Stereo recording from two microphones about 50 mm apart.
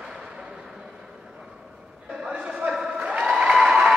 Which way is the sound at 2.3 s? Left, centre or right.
Centre.